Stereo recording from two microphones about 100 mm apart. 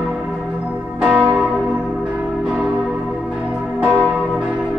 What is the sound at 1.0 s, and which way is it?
Church bell, 10° right (ahead or behind).